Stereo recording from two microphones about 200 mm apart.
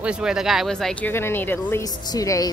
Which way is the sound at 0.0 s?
5° right (ahead or behind).